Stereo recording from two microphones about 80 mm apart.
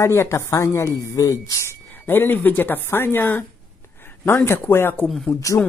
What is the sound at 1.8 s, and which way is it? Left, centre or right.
Speech, left.